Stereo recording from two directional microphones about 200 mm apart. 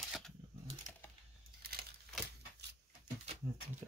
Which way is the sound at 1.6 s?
50° right (ahead or behind).